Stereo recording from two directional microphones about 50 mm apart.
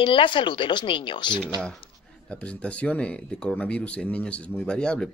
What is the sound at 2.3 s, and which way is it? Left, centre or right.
Speech, left.